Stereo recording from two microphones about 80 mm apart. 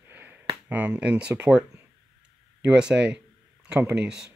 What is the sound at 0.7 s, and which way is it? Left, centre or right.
Speech, centre.